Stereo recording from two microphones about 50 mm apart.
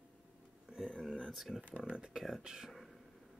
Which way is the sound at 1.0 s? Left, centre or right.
Centre.